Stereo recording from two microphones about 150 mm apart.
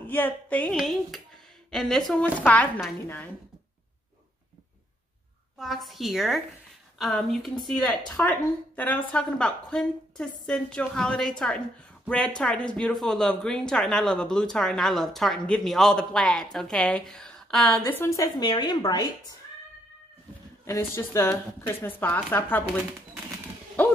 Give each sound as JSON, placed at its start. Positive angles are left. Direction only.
{"t": 0.0, "sound": "a sound", "side_deg": 10}
{"t": 0.7, "sound": "a woman's voice", "side_deg": 0}
{"t": 5.6, "sound": "a woman's voice", "side_deg": 0}
{"t": 8.2, "sound": "a woman's voice", "side_deg": 10}
{"t": 17.8, "sound": "a woman's voice", "side_deg": 15}
{"t": 20.6, "sound": "a woman's voice", "side_deg": 15}
{"t": 23.8, "sound": "bow-wow", "side_deg": 10}